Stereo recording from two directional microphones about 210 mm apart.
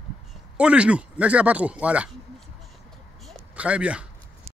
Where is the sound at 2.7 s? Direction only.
Centre (ahead or behind).